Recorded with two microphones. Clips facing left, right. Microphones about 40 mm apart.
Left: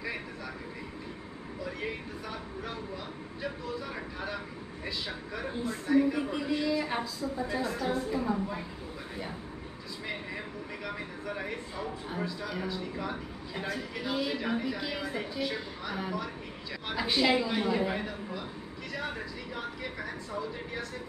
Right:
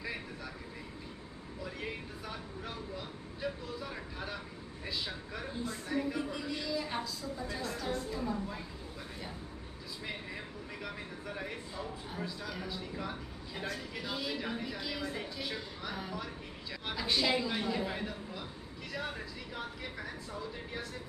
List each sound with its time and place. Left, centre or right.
4.8 s speech: centre
5.9 s a woman's voice: left
11.2 s a man's voice: centre
15.4 s speech: centre
16.9 s a man's voice: centre